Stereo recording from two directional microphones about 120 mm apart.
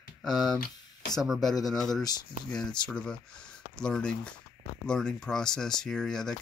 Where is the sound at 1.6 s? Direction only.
Centre (ahead or behind).